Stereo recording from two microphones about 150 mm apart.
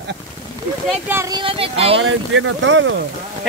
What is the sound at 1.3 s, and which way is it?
Speech, 35° right (ahead or behind).